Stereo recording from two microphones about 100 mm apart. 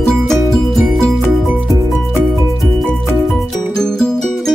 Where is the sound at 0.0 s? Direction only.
5° left (ahead or behind).